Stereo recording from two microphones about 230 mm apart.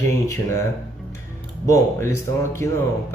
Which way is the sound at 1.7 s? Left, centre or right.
Centre.